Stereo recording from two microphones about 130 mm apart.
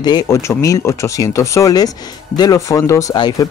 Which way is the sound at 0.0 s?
30° left (ahead or behind).